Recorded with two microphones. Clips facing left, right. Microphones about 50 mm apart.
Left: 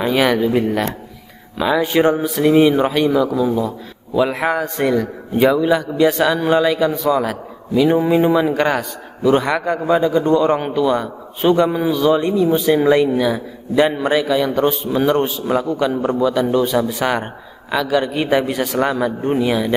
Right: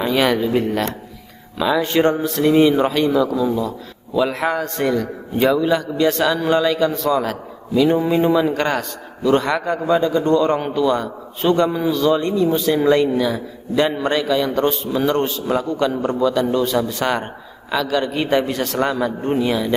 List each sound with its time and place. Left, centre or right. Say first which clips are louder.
0.0 s a man's voice: left 2 dB; centre